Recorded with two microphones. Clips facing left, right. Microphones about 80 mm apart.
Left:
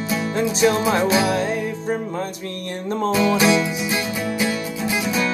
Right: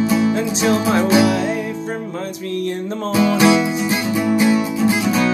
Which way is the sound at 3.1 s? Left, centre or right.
Right.